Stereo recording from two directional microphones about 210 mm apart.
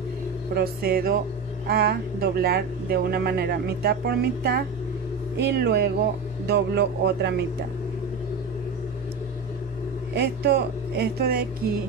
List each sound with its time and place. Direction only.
0.6 s speech: 45° right (ahead or behind)
10.1 s speech: 50° right (ahead or behind)